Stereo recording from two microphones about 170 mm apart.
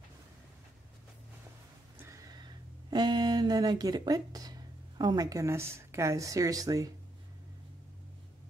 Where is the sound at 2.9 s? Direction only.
25° right (ahead or behind).